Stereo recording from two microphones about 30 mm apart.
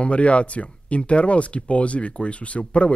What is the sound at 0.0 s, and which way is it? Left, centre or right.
Speech, left.